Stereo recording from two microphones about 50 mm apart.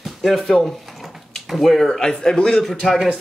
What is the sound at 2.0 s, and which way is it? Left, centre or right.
Speech, centre.